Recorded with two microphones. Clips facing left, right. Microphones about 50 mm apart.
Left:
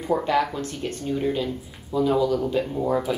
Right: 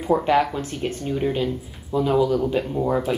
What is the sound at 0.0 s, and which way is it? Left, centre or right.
Speech, right.